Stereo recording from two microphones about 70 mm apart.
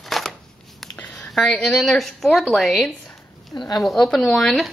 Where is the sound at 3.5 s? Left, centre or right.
Left.